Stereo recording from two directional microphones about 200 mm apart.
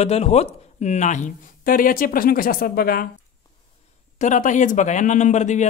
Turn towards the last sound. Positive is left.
turn(degrees=35)  # may be behind; listen again after turning